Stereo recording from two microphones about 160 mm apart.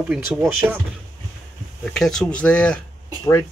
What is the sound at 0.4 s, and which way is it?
Speech, 15° right (ahead or behind).